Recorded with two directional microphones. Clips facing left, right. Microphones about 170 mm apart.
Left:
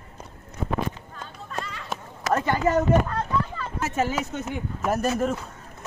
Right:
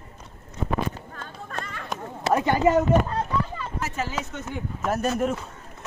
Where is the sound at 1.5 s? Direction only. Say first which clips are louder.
Left 2 dB; 50° right (ahead or behind).